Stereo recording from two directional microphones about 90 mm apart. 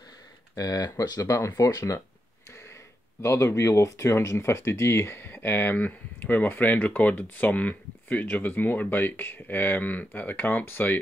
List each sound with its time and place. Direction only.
0.6 s speech: 50° left (ahead or behind)
3.2 s speech: 30° left (ahead or behind)